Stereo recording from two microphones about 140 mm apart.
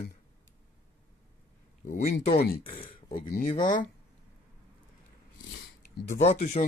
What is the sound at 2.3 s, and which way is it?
Speech, 90° left.